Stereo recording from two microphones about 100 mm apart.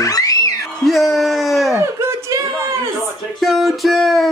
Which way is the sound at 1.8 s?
25° right (ahead or behind).